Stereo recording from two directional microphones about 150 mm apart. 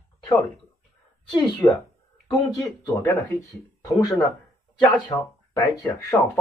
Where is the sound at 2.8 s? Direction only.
20° left (ahead or behind).